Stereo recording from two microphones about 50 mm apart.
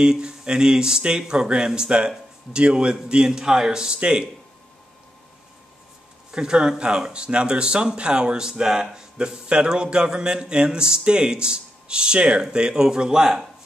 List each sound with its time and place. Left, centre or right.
0.0 s speech: centre
6.3 s speech: centre